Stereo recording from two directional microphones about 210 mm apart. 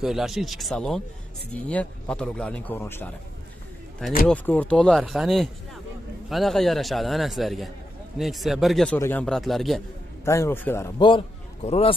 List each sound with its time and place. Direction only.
0.0 s speech: centre (ahead or behind)
4.3 s speech: 5° left (ahead or behind)
10.2 s a man's voice: 15° left (ahead or behind)
11.0 s a man's voice: 25° left (ahead or behind)